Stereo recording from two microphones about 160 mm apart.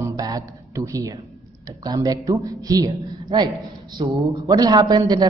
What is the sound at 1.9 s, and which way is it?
A man's voice, 20° right (ahead or behind).